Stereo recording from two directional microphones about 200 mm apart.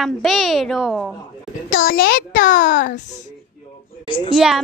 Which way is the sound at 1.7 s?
45° left (ahead or behind).